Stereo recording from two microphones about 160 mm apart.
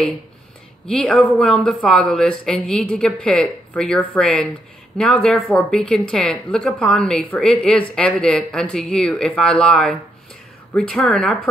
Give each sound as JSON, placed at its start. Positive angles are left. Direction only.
{"t": 0.8, "sound": "speech", "side_deg": 5}